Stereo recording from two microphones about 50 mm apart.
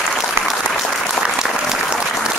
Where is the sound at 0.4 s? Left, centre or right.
Right.